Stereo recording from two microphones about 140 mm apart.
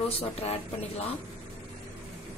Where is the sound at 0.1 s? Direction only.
45° left (ahead or behind).